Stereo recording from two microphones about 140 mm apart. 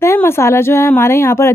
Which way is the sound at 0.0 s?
20° left (ahead or behind).